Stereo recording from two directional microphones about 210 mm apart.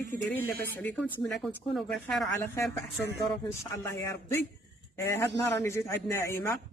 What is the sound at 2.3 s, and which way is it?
Speech, 15° left (ahead or behind).